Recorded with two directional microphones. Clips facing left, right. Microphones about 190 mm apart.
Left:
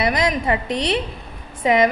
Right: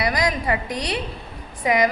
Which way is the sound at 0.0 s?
25° left (ahead or behind).